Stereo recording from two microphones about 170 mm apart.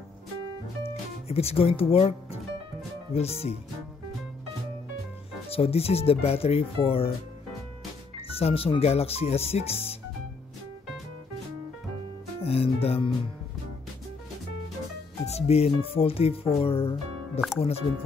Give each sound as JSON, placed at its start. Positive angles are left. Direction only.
{"t": 1.3, "sound": "speech", "side_deg": 35}
{"t": 5.5, "sound": "speech", "side_deg": 35}
{"t": 8.3, "sound": "speech", "side_deg": 35}
{"t": 12.4, "sound": "speech", "side_deg": 35}
{"t": 15.2, "sound": "speech", "side_deg": 35}